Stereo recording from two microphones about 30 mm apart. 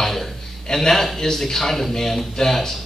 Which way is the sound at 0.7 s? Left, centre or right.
Centre.